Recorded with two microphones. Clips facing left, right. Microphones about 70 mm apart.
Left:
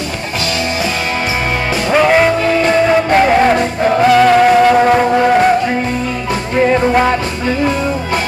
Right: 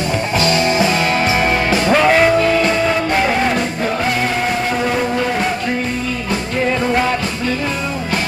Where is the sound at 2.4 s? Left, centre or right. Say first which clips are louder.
Left 3 dB; left.